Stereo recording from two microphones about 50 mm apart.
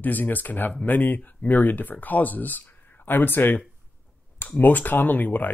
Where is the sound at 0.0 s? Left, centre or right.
Left.